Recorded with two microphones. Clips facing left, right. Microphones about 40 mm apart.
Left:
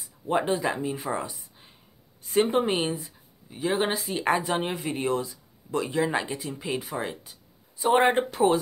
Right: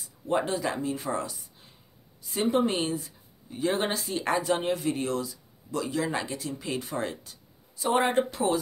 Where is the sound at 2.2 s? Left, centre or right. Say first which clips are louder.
Left 3 dB; left.